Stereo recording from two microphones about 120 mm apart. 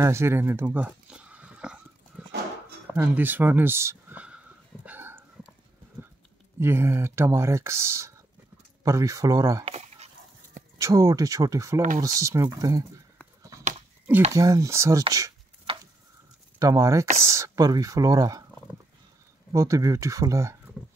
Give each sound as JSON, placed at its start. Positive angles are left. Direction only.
{"t": 0.0, "sound": "a sound", "side_deg": -20}
{"t": 2.9, "sound": "speech", "side_deg": -15}
{"t": 4.8, "sound": "a sound", "side_deg": -15}
{"t": 6.6, "sound": "speech", "side_deg": -20}
{"t": 9.7, "sound": "dog", "side_deg": -60}
{"t": 10.8, "sound": "speech", "side_deg": -25}
{"t": 14.3, "sound": "speech", "side_deg": -25}
{"t": 15.7, "sound": "a sound", "side_deg": -50}
{"t": 16.5, "sound": "speech", "side_deg": -25}
{"t": 19.5, "sound": "speech", "side_deg": -30}